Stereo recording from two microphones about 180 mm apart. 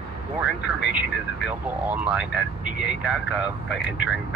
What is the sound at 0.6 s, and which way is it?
Speech, 70° left (ahead or behind).